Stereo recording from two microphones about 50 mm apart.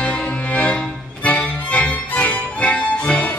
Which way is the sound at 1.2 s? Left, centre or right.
Left.